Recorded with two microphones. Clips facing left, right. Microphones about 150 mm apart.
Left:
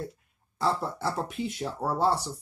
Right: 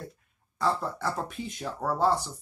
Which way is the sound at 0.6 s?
5° left (ahead or behind).